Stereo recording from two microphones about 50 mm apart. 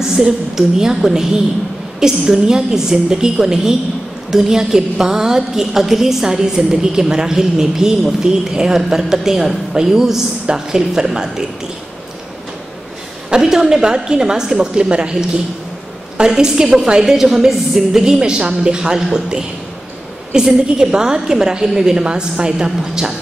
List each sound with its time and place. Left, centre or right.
0.1 s a woman's voice: centre
13.3 s a woman's voice: centre